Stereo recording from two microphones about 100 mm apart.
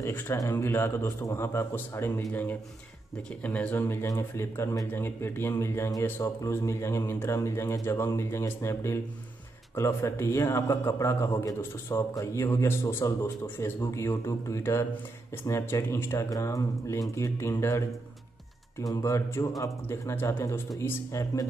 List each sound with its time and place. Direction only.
0.0 s a man's voice: 25° left (ahead or behind)
3.8 s a man's voice: 25° left (ahead or behind)